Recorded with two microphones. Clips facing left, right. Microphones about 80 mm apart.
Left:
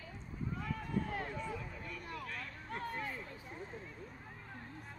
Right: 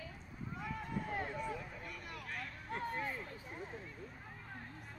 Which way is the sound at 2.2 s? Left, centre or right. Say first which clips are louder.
Even; right.